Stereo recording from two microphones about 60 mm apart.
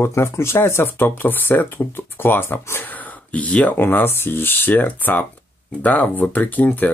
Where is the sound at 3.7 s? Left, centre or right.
Left.